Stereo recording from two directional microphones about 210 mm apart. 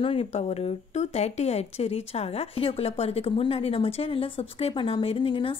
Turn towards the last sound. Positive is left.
turn(degrees=25)  # may be behind; listen again after turning